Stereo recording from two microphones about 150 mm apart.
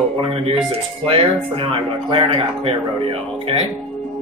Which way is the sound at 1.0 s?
35° right (ahead or behind).